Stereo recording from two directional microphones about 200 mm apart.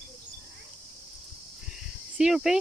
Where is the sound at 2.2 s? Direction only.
5° right (ahead or behind).